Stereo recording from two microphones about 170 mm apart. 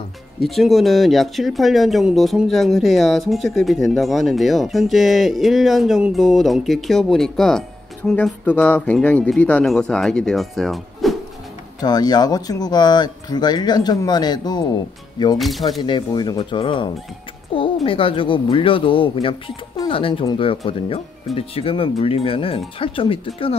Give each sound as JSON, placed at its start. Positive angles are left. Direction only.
{"t": 0.4, "sound": "speech", "side_deg": 0}
{"t": 11.8, "sound": "speech", "side_deg": 25}
{"t": 15.3, "sound": "speech", "side_deg": 0}
{"t": 15.8, "sound": "speech", "side_deg": 25}